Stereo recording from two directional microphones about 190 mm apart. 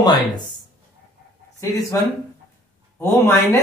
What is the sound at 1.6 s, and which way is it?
Speech, 15° left (ahead or behind).